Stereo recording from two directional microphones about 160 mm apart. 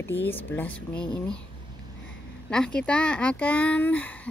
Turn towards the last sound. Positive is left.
turn(degrees=10)  # may be behind; listen again after turning